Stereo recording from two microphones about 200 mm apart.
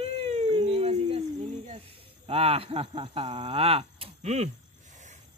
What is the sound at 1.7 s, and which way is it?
Speech, 30° right (ahead or behind).